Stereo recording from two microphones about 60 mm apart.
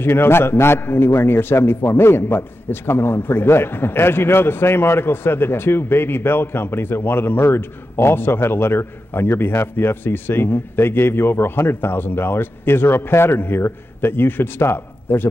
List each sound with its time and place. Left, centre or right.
0.0 s a man's voice: left